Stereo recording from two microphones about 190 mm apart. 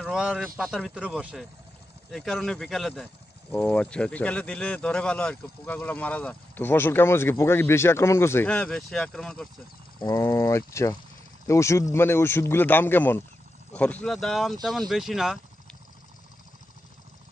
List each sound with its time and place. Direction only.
0.0 s speech: 5° right (ahead or behind)
9.9 s speech: 20° left (ahead or behind); by 15.3 s centre (ahead or behind)